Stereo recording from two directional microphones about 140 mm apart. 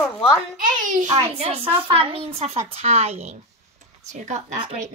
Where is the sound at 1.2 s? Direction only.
45° right (ahead or behind).